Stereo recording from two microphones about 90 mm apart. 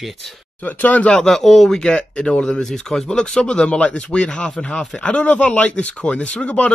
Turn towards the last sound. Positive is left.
turn(degrees=15)  # may be behind; listen again after turning